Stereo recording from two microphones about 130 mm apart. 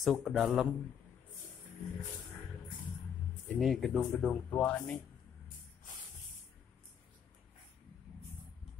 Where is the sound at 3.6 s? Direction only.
Centre (ahead or behind).